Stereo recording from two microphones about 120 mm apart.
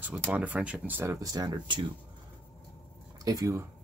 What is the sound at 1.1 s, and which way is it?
Speech, 30° right (ahead or behind).